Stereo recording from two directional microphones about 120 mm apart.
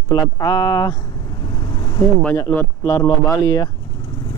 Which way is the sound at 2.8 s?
30° left (ahead or behind).